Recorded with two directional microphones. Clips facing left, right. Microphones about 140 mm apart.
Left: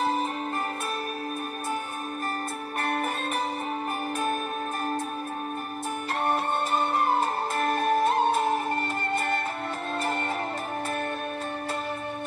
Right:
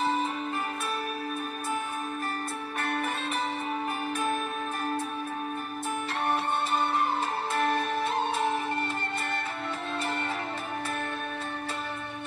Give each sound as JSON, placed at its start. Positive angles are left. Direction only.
{"t": 2.8, "sound": "music", "side_deg": 45}
{"t": 6.2, "sound": "music", "side_deg": 45}